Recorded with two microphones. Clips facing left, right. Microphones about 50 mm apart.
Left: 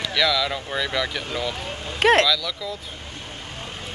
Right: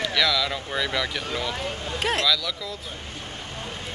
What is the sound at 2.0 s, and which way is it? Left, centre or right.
Speech, left.